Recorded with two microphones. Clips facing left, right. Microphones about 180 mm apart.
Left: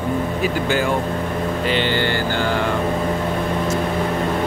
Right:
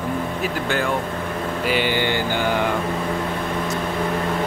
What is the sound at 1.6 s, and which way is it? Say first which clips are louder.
Music: even; 10° right (ahead or behind).